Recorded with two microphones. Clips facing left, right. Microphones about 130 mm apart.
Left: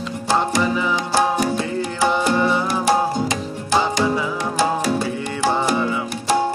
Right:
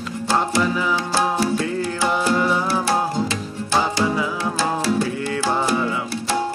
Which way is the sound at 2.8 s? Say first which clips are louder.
Left 3 dB; 15° left (ahead or behind).